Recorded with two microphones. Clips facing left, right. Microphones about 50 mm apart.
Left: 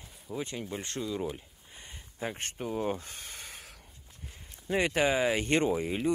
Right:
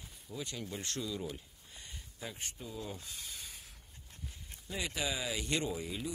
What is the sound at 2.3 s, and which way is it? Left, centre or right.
Speech, left.